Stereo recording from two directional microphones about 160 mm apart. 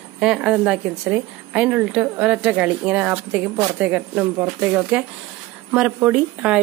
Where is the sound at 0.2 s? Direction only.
5° right (ahead or behind).